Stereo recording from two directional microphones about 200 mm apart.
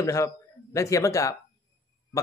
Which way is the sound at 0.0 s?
15° left (ahead or behind).